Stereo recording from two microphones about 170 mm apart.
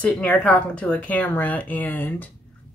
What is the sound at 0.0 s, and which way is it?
Speech, 10° left (ahead or behind).